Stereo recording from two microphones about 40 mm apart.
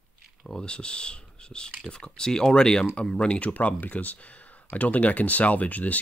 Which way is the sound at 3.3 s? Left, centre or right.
Left.